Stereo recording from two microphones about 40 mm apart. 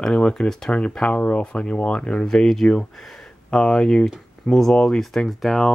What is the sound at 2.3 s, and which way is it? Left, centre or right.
Speech, centre.